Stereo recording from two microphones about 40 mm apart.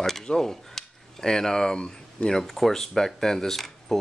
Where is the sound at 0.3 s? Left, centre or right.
Centre.